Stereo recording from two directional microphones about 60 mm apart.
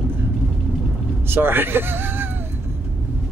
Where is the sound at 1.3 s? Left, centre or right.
Right.